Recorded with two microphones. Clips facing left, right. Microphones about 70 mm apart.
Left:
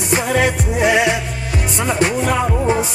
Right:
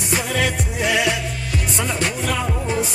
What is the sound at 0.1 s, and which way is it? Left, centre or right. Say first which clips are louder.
Music: left 5 dB; left.